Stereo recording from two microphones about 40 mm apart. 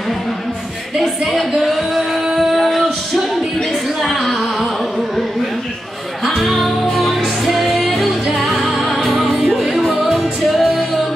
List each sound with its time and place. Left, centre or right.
0.9 s music: centre
2.3 s a sound: centre
4.0 s music: centre
6.2 s music: centre